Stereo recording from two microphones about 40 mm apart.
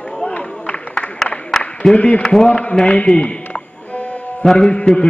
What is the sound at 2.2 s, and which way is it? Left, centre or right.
Speech, centre.